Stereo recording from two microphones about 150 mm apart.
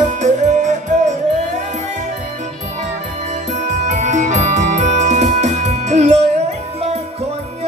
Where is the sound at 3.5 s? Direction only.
55° right (ahead or behind).